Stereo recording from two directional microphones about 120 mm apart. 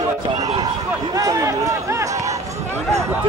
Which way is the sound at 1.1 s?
30° right (ahead or behind).